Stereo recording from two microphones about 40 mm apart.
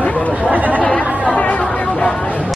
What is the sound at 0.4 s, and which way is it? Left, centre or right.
Chatter, right.